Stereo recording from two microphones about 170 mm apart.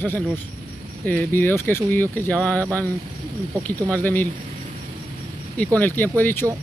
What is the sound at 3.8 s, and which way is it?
Speech, 10° left (ahead or behind).